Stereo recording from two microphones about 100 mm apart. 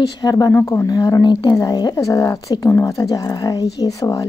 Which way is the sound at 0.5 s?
25° left (ahead or behind).